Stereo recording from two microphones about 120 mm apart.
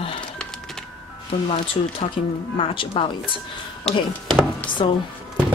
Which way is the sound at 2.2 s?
60° left (ahead or behind).